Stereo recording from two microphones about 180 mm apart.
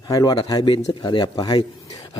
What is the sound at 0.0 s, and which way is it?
A man's voice, 20° left (ahead or behind).